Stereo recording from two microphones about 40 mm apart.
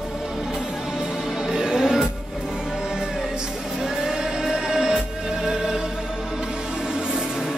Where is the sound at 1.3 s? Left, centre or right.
Centre.